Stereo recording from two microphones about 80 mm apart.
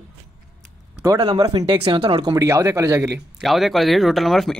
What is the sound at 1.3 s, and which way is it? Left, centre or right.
Speech, right.